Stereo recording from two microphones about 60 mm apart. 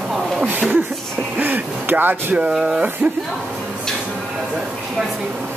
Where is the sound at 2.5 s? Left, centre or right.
Centre.